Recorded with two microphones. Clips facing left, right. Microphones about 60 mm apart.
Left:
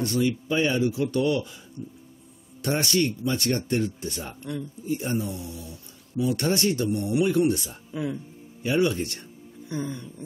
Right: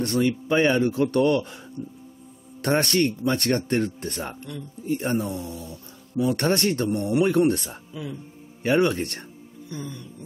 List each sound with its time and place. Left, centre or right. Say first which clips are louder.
0.0 s speech: right 2 dB; right
1.8 s music: right 3 dB; right
2.6 s speech: right 3 dB; right
6.2 s speech: right 2 dB; right
7.9 s speech: left 5 dB; left
8.6 s speech: right 3 dB; right
9.7 s music: left 4 dB; left